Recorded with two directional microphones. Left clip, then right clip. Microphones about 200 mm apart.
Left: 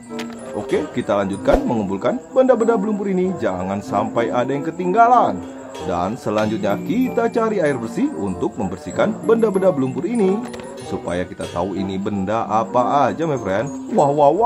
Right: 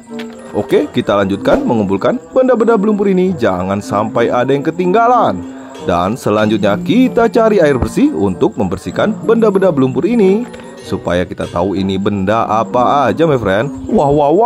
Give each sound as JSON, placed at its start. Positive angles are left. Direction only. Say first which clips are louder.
{"t": 0.7, "sound": "speech", "louder": "right 7 dB", "side_deg": -35}